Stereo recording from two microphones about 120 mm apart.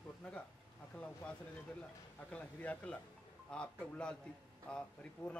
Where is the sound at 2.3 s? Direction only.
10° left (ahead or behind).